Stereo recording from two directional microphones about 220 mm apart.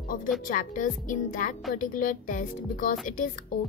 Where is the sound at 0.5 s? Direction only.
35° left (ahead or behind).